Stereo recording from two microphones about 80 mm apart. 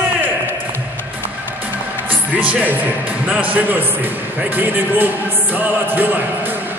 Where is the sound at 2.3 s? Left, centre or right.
Right.